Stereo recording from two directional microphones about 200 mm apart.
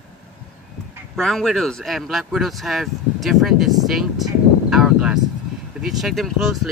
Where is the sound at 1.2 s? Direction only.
Centre (ahead or behind).